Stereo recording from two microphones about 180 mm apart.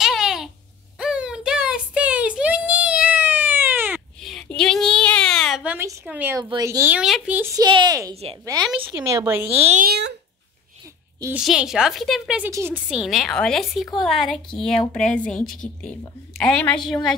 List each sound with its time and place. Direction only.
0.0 s babbling: centre (ahead or behind)
0.9 s a sound: 5° right (ahead or behind)
4.2 s a sound: centre (ahead or behind)
6.0 s speech: 10° right (ahead or behind)
7.5 s a woman's voice: 25° right (ahead or behind)
9.5 s speech: 35° right (ahead or behind)
9.8 s a child's voice: 65° right (ahead or behind)
11.3 s a woman's voice: 5° right (ahead or behind)
12.4 s a woman's voice: 15° right (ahead or behind); by 17.1 s 5° left (ahead or behind)